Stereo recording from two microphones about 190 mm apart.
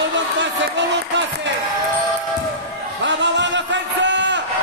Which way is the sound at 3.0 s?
70° right (ahead or behind).